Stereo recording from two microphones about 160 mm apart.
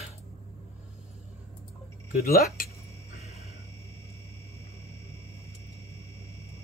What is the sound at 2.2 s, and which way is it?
Speech, 65° left (ahead or behind).